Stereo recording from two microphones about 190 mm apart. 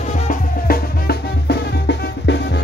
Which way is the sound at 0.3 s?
55° left (ahead or behind).